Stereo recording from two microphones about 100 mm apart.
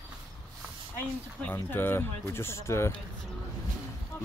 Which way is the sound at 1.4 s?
20° left (ahead or behind).